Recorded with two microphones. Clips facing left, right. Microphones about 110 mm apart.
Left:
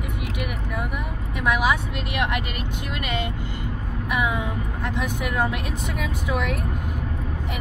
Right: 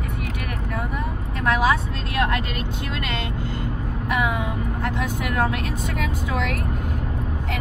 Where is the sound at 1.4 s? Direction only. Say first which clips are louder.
Right 2 dB; 15° left (ahead or behind).